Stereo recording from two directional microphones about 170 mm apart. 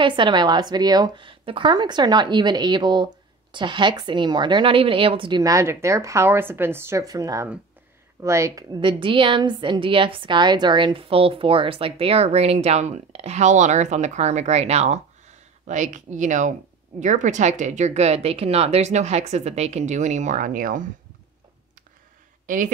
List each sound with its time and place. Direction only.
0.0 s a woman's voice: 25° right (ahead or behind); by 20.8 s 50° right (ahead or behind)